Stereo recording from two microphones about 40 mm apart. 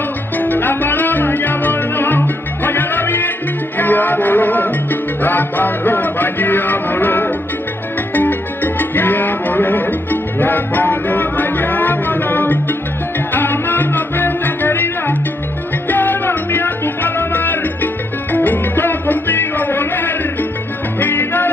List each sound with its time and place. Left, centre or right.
0.4 s music: left
8.1 s salsa music: left
10.4 s music: left